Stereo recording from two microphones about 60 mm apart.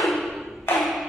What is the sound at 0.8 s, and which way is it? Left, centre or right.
Music, centre.